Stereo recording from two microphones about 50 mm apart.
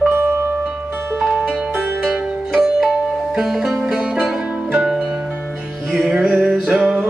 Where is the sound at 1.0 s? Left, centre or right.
Right.